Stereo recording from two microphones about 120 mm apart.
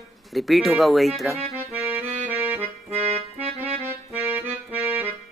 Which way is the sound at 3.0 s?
60° right (ahead or behind).